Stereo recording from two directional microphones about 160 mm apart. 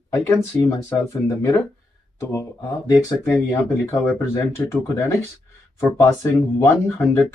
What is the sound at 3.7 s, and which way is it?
Speech, 15° left (ahead or behind).